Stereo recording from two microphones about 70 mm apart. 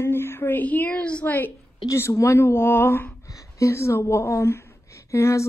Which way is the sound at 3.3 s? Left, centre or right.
Left.